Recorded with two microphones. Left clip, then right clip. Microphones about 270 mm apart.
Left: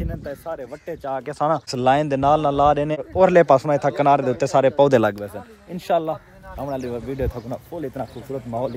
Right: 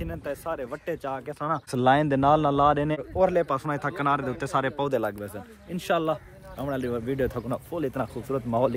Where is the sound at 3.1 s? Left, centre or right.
Left.